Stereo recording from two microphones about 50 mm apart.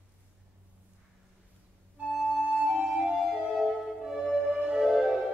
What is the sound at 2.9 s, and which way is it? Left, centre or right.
Music, centre.